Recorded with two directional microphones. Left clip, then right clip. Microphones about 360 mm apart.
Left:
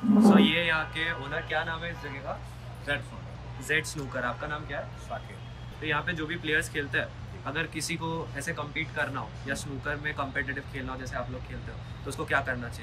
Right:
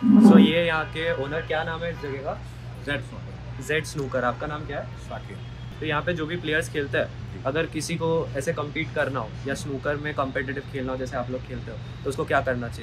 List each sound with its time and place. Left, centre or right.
0.2 s speech: centre
5.9 s speech: centre